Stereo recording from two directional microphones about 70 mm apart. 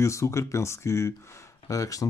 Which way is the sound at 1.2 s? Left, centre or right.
Left.